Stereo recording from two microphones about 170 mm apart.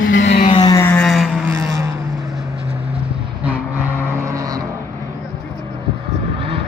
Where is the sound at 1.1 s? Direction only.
Centre (ahead or behind).